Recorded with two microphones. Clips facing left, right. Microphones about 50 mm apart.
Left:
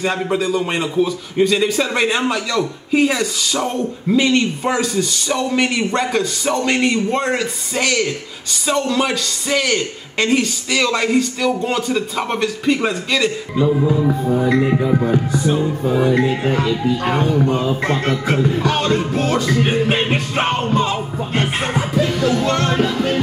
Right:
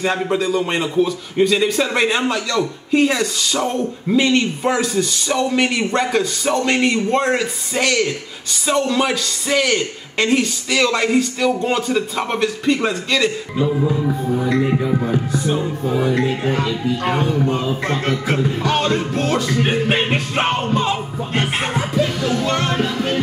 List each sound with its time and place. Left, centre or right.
0.0 s speech: centre
14.0 s music: left
15.3 s speech: centre
21.7 s music: centre